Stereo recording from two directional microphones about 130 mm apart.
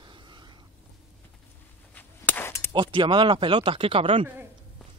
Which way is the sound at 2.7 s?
40° right (ahead or behind).